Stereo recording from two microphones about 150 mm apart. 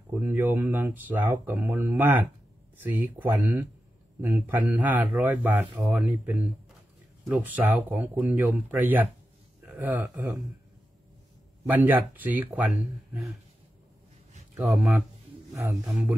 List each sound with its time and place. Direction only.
0.1 s speech: 10° right (ahead or behind)
11.7 s speech: 10° right (ahead or behind)
14.6 s speech: centre (ahead or behind)
15.5 s speech: 20° right (ahead or behind)